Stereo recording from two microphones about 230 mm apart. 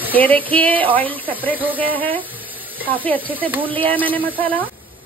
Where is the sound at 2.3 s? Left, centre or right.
Centre.